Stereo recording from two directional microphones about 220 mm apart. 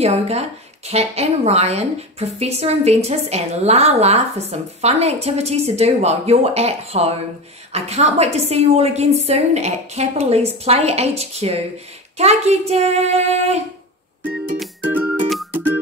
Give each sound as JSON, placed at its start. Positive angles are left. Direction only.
{"t": 0.0, "sound": "a woman's voice", "side_deg": -30}
{"t": 14.6, "sound": "music", "side_deg": -5}